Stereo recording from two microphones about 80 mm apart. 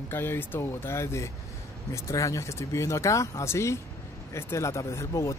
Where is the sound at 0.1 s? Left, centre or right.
Left.